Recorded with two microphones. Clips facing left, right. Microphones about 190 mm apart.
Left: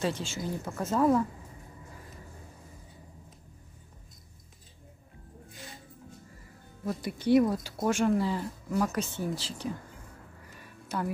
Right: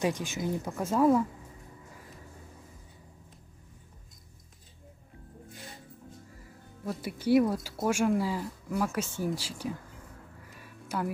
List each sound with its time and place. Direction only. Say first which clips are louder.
0.0 s speech: right 2 dB; 15° right (ahead or behind)
6.8 s speech: left 1 dB; 5° right (ahead or behind)
10.5 s a sound: even; 5° right (ahead or behind)